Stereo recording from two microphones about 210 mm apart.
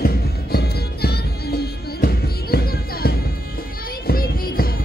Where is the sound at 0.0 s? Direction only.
45° left (ahead or behind).